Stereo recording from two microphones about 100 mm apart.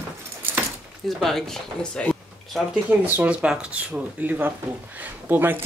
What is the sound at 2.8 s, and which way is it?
Speech, 15° right (ahead or behind).